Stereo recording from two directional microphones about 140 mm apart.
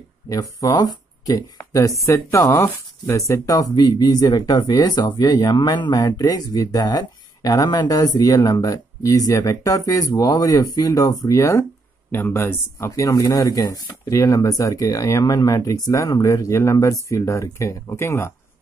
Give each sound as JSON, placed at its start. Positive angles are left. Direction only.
{"t": 0.3, "sound": "speech", "side_deg": 25}